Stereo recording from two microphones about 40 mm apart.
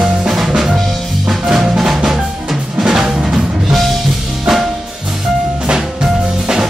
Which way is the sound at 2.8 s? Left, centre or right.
Centre.